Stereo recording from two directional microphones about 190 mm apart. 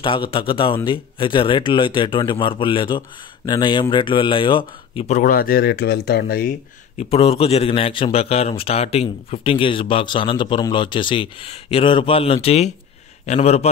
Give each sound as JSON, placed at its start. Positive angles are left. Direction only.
{"t": 0.0, "sound": "a man's voice", "side_deg": 25}
{"t": 7.0, "sound": "a man's voice", "side_deg": 30}